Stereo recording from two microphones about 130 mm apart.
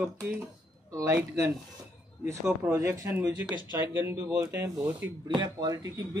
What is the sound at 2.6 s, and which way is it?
Speech, 20° right (ahead or behind).